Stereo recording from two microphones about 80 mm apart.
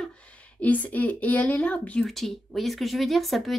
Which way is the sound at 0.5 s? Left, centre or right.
Centre.